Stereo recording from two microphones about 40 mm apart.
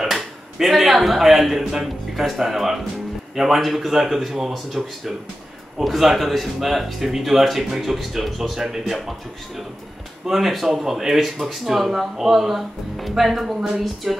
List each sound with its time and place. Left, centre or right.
0.0 s a sound: centre
1.6 s speech: centre
10.2 s speech: centre